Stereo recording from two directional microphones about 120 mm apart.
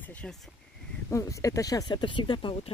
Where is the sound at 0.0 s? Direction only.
15° left (ahead or behind).